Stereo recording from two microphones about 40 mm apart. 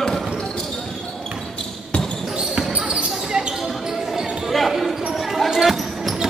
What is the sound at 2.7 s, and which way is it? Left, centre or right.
Basketball bounce, right.